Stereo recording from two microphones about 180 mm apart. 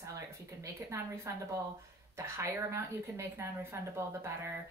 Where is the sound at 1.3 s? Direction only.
15° right (ahead or behind).